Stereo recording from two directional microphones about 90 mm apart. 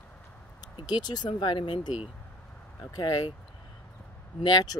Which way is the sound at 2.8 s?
40° left (ahead or behind).